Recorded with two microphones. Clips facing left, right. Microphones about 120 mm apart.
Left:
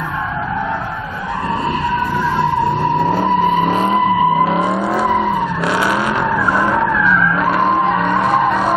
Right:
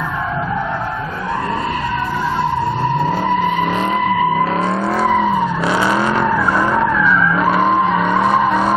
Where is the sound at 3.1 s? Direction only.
30° left (ahead or behind).